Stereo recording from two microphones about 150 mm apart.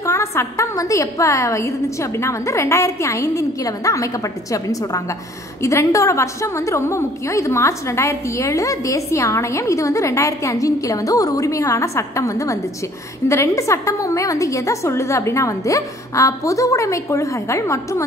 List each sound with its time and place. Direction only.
0.0 s a woman's voice: 20° left (ahead or behind)